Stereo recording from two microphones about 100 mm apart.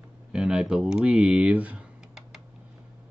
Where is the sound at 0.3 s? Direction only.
10° right (ahead or behind).